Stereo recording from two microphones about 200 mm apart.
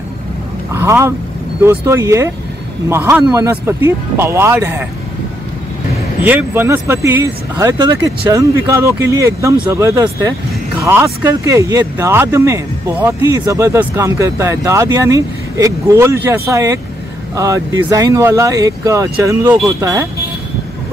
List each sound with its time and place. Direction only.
0.7 s speech: 15° right (ahead or behind)
6.2 s speech: 10° right (ahead or behind)